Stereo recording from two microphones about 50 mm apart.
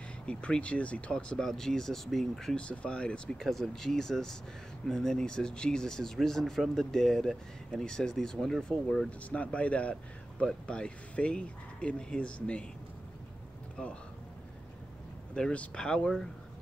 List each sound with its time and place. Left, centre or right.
0.3 s speech: left; by 2.5 s centre
2.5 s speech: left
3.3 s speech: centre
9.3 s speech: left
15.3 s speech: left